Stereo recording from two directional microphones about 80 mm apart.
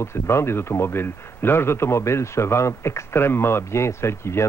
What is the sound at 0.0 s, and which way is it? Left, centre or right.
A man's voice, left.